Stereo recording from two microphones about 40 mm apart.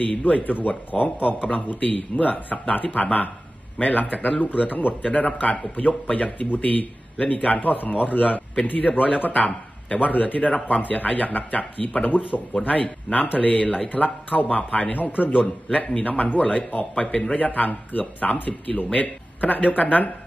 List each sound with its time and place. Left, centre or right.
0.0 s a man's voice: left
10.8 s a man's voice: left
15.4 s a man's voice: left